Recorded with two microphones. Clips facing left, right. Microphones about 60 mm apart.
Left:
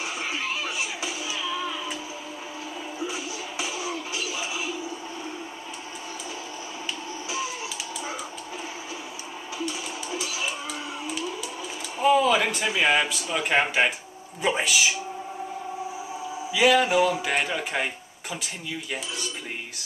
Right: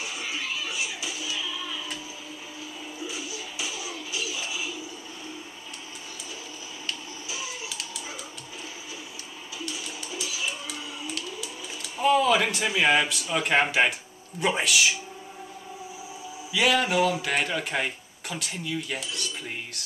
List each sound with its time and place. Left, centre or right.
3.1 s music: left
12.0 s speech: centre
16.5 s speech: centre